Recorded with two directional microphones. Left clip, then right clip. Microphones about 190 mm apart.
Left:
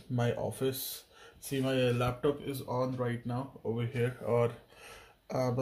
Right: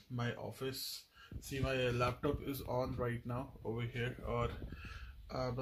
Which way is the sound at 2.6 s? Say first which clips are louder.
Left 5 dB; 40° right (ahead or behind).